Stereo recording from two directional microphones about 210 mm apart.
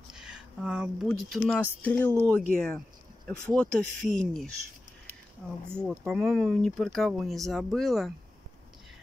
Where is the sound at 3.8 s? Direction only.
35° left (ahead or behind).